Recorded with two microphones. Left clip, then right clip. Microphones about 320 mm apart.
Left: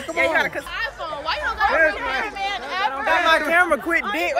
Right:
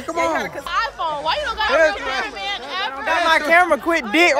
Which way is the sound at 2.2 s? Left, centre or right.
Left.